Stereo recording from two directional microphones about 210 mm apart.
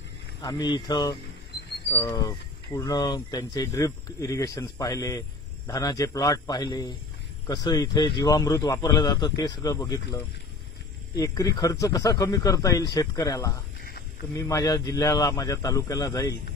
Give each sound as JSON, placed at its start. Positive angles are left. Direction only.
{"t": 0.4, "sound": "speech", "side_deg": 20}